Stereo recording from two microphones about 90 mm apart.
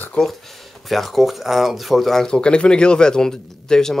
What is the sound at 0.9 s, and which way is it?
Speech, centre (ahead or behind).